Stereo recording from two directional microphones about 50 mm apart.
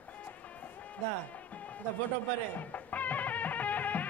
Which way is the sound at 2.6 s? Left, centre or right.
Left.